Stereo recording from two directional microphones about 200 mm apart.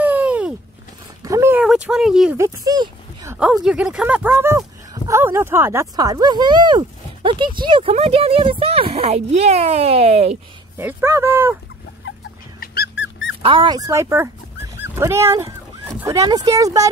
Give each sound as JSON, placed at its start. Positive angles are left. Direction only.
{"t": 0.0, "sound": "a sound", "side_deg": -5}
{"t": 2.3, "sound": "speech", "side_deg": -15}
{"t": 3.3, "sound": "speech", "side_deg": -5}
{"t": 10.8, "sound": "speech", "side_deg": -10}
{"t": 12.5, "sound": "dog", "side_deg": 50}
{"t": 13.4, "sound": "speech", "side_deg": -25}